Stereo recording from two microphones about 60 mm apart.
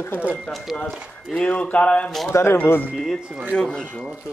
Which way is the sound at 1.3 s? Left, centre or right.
Centre.